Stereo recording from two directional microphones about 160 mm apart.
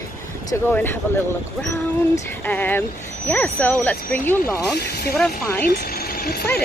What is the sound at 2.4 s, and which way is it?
Speech, 10° left (ahead or behind).